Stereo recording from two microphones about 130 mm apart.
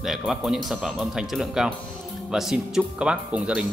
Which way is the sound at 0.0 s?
Centre (ahead or behind).